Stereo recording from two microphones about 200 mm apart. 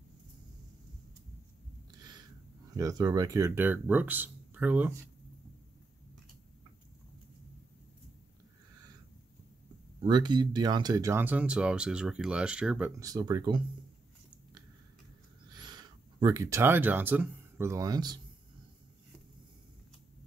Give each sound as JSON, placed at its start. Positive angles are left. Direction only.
{"t": 1.9, "sound": "a sound", "side_deg": -20}
{"t": 2.7, "sound": "speech", "side_deg": -20}
{"t": 10.0, "sound": "speech", "side_deg": -20}
{"t": 13.0, "sound": "speech", "side_deg": -20}
{"t": 15.5, "sound": "speech", "side_deg": -20}